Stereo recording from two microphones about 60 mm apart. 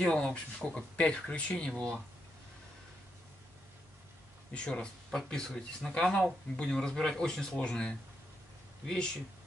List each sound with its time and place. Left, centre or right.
0.1 s speech: centre
4.6 s speech: centre